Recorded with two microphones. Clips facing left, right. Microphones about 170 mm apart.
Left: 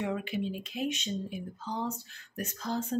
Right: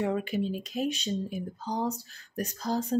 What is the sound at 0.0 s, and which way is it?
Speech, 40° right (ahead or behind).